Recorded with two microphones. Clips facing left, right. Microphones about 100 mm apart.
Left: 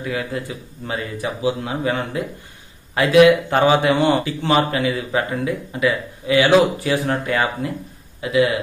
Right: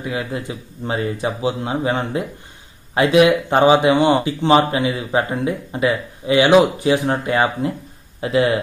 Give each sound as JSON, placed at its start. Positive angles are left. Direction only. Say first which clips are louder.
{"t": 0.0, "sound": "speech", "louder": "even", "side_deg": -20}
{"t": 8.2, "sound": "speech", "louder": "even", "side_deg": -35}